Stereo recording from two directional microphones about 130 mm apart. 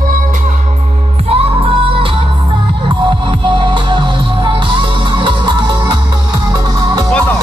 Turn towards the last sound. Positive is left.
turn(degrees=-30)  # may be behind; listen again after turning